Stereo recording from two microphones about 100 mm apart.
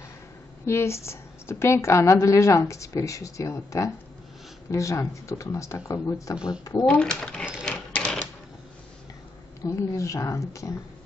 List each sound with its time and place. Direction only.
0.7 s a woman's voice: 25° left (ahead or behind)
6.3 s speech: 10° right (ahead or behind)
6.6 s speech: 35° left (ahead or behind)
6.9 s speech: 10° left (ahead or behind)
7.7 s typewriter: 10° left (ahead or behind)
9.7 s speech: 30° left (ahead or behind)